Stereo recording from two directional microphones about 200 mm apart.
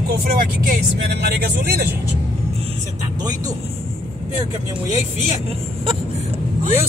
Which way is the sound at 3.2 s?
20° right (ahead or behind).